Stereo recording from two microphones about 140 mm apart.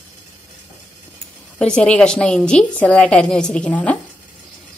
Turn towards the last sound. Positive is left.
turn(degrees=10)  # may be behind; listen again after turning